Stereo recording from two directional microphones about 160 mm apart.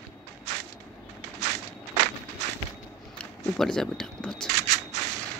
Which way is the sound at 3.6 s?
5° left (ahead or behind).